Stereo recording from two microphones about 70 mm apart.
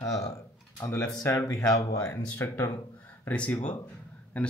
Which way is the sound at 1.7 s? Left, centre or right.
Left.